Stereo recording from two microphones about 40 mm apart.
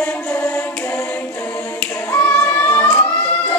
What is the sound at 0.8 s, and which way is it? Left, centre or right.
A capella, left.